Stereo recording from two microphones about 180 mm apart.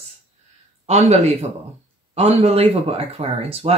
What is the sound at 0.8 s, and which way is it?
Speech, 35° right (ahead or behind).